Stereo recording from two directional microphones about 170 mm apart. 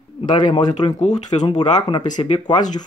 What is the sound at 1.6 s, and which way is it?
Speech, 25° left (ahead or behind).